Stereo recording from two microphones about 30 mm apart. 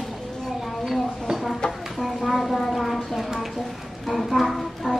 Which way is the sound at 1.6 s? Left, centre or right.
Left.